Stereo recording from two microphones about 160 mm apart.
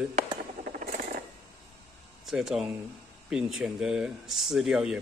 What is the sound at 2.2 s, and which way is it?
Speech, 5° right (ahead or behind).